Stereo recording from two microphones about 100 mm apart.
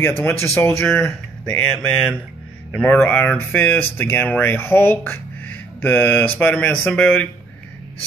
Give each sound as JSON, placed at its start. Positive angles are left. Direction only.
{"t": 0.2, "sound": "speech", "side_deg": 20}
{"t": 1.6, "sound": "speech", "side_deg": 15}